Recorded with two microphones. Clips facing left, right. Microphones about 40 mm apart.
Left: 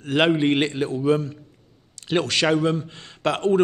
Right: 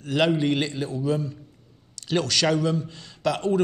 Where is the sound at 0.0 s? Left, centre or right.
Left.